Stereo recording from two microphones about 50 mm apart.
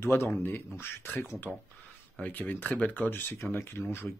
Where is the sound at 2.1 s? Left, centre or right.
Left.